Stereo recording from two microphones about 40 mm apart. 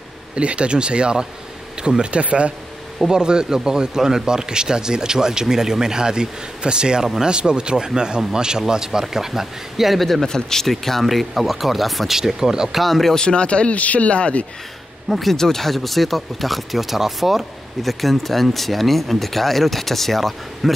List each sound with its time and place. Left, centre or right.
0.4 s speech: right; by 9.9 s centre
10.2 s speech: centre
12.2 s speech: centre
13.1 s speech: left
15.0 s speech: centre